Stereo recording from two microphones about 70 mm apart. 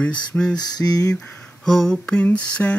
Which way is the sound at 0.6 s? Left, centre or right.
Left.